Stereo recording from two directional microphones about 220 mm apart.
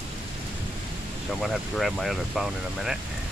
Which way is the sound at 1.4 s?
Centre (ahead or behind).